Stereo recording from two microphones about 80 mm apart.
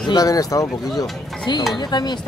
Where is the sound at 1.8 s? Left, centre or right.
Left.